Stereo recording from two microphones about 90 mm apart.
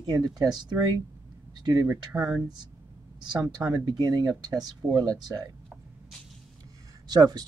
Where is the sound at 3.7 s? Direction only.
50° right (ahead or behind).